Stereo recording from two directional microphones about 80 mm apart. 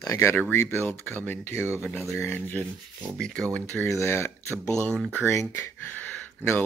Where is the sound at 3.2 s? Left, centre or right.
Centre.